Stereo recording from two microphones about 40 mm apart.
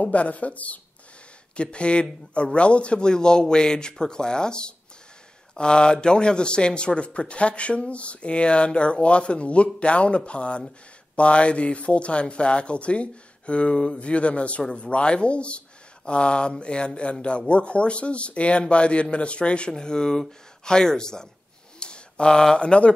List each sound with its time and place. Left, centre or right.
0.0 s speech: left
1.6 s speech: left
19.7 s speech: centre